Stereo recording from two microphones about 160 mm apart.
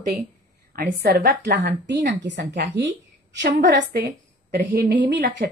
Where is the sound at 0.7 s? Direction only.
70° right (ahead or behind); by 2.1 s 90° right.